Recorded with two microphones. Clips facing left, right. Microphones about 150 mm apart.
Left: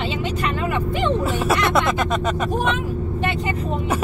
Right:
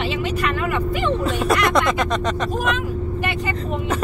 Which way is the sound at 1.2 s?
5° left (ahead or behind).